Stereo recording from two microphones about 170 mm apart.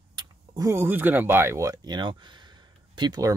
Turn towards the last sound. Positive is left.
turn(degrees=-20)  # may be behind; listen again after turning